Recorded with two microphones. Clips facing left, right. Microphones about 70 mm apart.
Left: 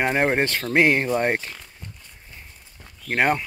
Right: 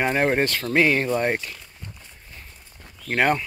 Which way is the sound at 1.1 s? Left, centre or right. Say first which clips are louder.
Left 1 dB; left.